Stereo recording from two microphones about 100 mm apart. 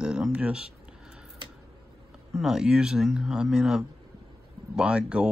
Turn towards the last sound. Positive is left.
turn(degrees=-10)  # may be behind; listen again after turning